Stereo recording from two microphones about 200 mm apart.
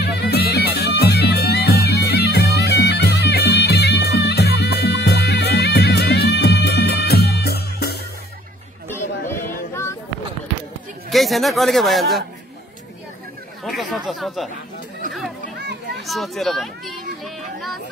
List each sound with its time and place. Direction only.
0.0 s music: 55° left (ahead or behind)
8.8 s chatter: 10° left (ahead or behind)
11.1 s speech: centre (ahead or behind)
13.7 s speech: centre (ahead or behind)
16.1 s children playing: centre (ahead or behind)